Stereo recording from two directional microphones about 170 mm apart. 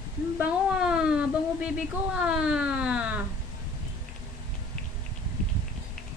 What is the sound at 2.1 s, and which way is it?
Speech, 5° right (ahead or behind).